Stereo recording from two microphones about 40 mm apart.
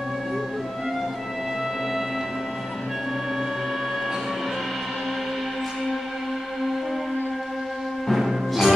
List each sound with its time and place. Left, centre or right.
8.1 s music: centre